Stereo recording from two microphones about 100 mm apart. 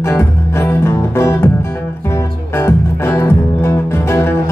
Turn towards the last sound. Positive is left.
turn(degrees=25)  # may be behind; listen again after turning